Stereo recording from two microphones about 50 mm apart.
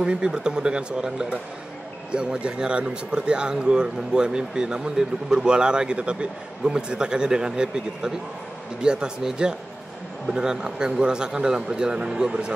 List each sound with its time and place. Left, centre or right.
0.0 s speech: centre